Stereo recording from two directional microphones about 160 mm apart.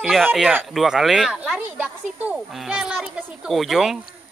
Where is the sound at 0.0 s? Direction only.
Centre (ahead or behind).